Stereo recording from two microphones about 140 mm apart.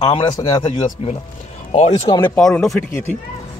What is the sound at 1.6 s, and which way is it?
Speech, 50° left (ahead or behind).